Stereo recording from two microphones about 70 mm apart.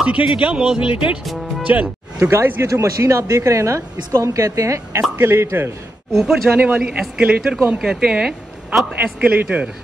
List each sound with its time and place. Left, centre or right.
0.0 s speech: centre
2.1 s speech: right
2.6 s a woman's voice: right
6.2 s speech: centre
9.0 s a man's voice: right